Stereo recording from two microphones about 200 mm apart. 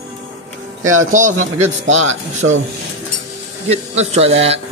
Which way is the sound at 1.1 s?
40° right (ahead or behind).